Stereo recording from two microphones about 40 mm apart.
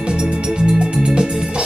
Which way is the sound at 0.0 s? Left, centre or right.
Centre.